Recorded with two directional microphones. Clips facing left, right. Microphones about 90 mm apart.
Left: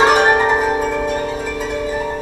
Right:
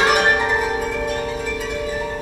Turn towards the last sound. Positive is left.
turn(degrees=30)  # may be behind; listen again after turning